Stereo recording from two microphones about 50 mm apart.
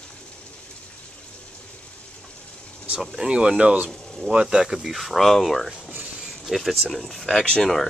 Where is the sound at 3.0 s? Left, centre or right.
Centre.